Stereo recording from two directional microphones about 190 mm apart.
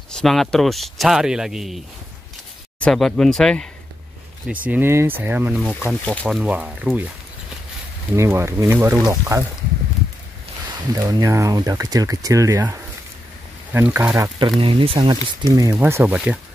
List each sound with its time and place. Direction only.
0.1 s speech: centre (ahead or behind)
2.8 s speech: 5° left (ahead or behind)
4.6 s speech: 10° right (ahead or behind)
8.2 s speech: 15° right (ahead or behind)
10.9 s speech: 20° right (ahead or behind)
14.6 s speech: 30° right (ahead or behind)
15.7 s speech: 10° right (ahead or behind)